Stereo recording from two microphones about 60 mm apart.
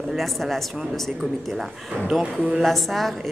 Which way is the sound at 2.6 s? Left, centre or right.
Centre.